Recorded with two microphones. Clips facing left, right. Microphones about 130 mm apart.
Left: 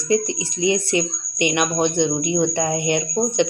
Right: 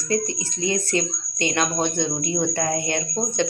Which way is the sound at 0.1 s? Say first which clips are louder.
Left 4 dB; 15° left (ahead or behind).